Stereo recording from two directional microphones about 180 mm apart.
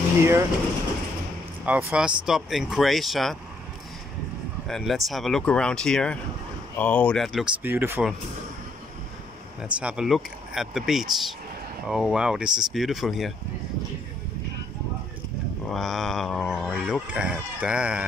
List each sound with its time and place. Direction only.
0.2 s speech: 15° right (ahead or behind)
1.7 s speech: 10° right (ahead or behind)
4.6 s speech: centre (ahead or behind)
7.6 s speech: 10° right (ahead or behind)
9.6 s speech: 5° right (ahead or behind)
15.7 s speech: centre (ahead or behind)